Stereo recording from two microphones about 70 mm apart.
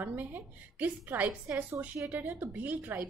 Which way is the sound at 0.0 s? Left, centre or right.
Right.